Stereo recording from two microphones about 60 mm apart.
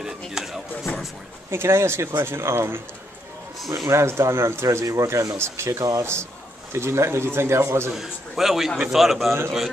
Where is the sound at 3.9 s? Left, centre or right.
Right.